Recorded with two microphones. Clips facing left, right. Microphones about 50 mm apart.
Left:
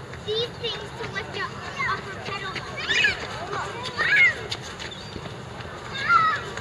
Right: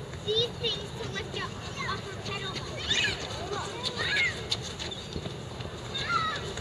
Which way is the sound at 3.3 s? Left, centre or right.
Left.